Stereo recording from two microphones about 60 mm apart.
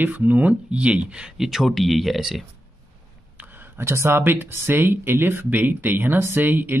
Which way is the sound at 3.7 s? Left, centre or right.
Right.